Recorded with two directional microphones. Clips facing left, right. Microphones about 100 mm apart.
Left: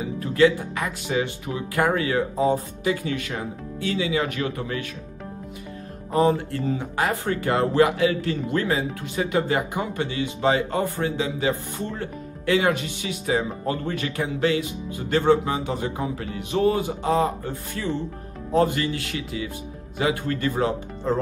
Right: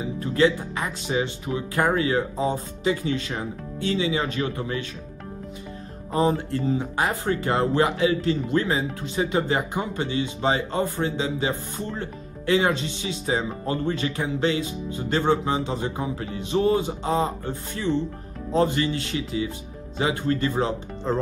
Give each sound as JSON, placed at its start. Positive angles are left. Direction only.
{"t": 0.2, "sound": "speech", "side_deg": -25}
{"t": 6.1, "sound": "speech", "side_deg": -25}